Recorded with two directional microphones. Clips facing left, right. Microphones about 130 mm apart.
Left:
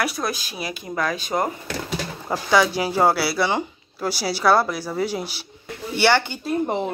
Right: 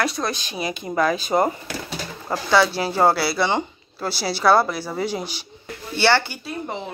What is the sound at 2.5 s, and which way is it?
Speech, 15° left (ahead or behind).